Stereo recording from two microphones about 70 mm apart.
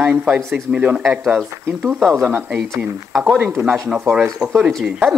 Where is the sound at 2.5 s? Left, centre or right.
Centre.